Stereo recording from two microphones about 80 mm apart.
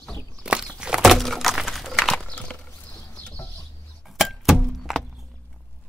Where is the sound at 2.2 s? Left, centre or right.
Centre.